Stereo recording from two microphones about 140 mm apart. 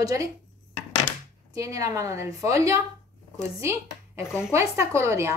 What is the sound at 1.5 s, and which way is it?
Speech, 25° right (ahead or behind).